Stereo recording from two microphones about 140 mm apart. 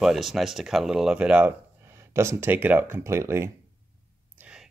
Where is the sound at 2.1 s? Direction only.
20° right (ahead or behind).